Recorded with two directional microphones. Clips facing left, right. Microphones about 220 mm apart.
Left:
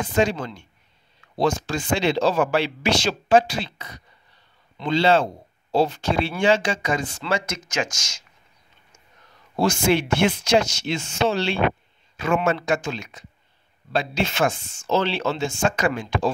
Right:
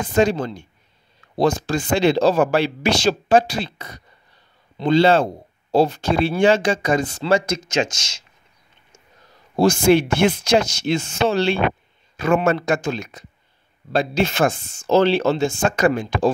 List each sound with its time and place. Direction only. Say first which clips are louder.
0.1 s speech: right 5 dB; 40° right (ahead or behind)
9.6 s speech: right 5 dB; 40° right (ahead or behind)
11.2 s speech: right 3 dB; 50° right (ahead or behind)